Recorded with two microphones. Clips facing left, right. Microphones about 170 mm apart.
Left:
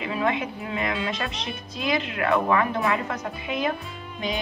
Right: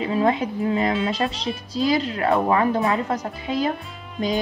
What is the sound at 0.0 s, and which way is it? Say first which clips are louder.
Speech: right 5 dB; 35° right (ahead or behind).